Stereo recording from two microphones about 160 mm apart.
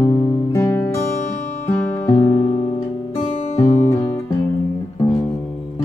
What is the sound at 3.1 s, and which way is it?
Music, 40° left (ahead or behind).